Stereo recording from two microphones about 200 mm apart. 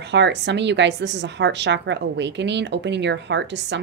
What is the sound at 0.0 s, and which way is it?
A woman's voice, 60° right (ahead or behind).